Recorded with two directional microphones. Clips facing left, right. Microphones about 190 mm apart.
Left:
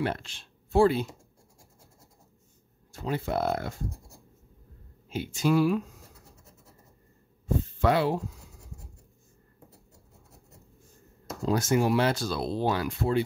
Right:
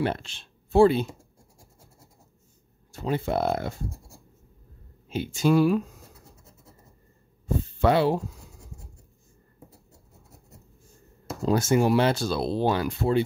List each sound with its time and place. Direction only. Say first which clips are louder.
0.0 s speech: right 3 dB; 25° right (ahead or behind)
2.9 s speech: right 3 dB; 25° right (ahead or behind)
5.1 s speech: right 3 dB; 25° right (ahead or behind)
7.8 s speech: right 4 dB; 30° right (ahead or behind)
11.4 s speech: right 3 dB; 25° right (ahead or behind)